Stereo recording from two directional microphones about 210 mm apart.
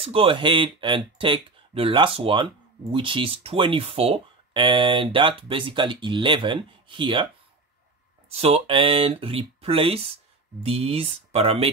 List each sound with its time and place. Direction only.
0.0 s speech: 25° right (ahead or behind)
8.3 s speech: 30° right (ahead or behind)